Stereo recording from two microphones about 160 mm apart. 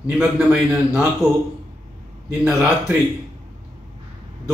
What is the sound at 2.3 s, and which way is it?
Speech, 10° right (ahead or behind).